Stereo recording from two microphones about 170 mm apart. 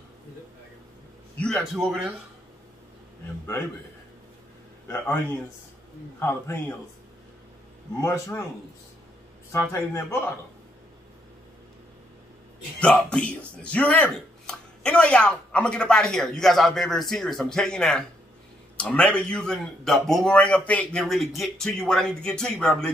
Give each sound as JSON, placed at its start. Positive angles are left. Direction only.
{"t": 1.4, "sound": "speech", "side_deg": 0}
{"t": 4.8, "sound": "a man's voice", "side_deg": 15}
{"t": 8.0, "sound": "a man's voice", "side_deg": 15}
{"t": 9.5, "sound": "a man's voice", "side_deg": 15}
{"t": 12.8, "sound": "a man's voice", "side_deg": 5}